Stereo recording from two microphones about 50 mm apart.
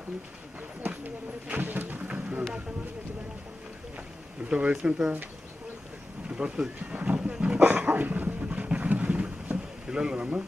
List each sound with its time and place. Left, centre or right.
0.8 s a sound: right
2.0 s music: right
4.5 s speech: right
6.2 s speech: right
7.0 s roaring cats: right
7.6 s dog: right